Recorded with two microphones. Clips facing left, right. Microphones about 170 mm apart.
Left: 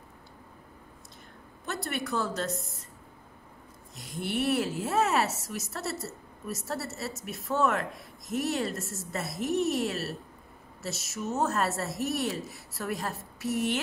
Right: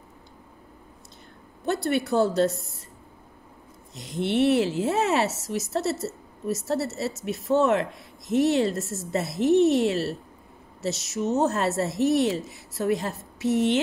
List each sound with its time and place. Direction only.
1.7 s speech: 30° right (ahead or behind)
3.9 s a woman's voice: 25° right (ahead or behind)
11.2 s a woman's voice: 25° right (ahead or behind)